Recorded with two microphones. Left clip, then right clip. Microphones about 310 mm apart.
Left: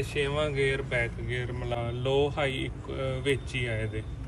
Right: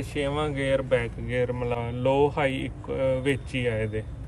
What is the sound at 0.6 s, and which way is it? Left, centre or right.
Speech, centre.